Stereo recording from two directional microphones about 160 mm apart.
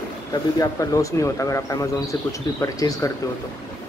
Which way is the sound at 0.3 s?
20° left (ahead or behind).